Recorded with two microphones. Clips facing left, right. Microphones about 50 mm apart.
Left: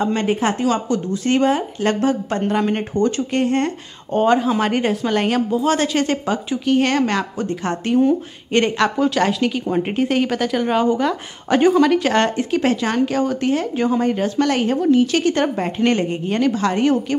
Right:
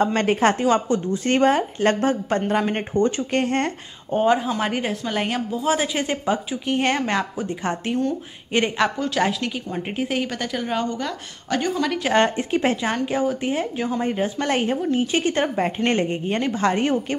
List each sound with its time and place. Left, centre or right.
0.0 s speech: right
0.7 s speech: right
3.3 s speech: right
4.1 s a woman's voice: centre
9.7 s speech: centre
9.9 s speech: centre
11.8 s a woman's voice: centre
12.2 s speech: right
13.0 s a woman's voice: centre
13.7 s a woman's voice: centre
14.0 s a woman's voice: centre
14.4 s speech: right